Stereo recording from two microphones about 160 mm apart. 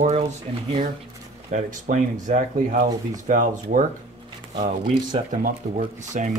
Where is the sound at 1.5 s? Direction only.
55° right (ahead or behind).